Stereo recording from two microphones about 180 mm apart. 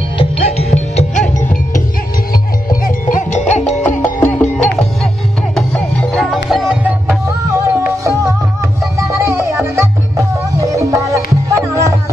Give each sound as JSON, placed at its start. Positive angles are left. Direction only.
{"t": 0.2, "sound": "music", "side_deg": 35}
{"t": 2.7, "sound": "music", "side_deg": 50}
{"t": 3.8, "sound": "music", "side_deg": 10}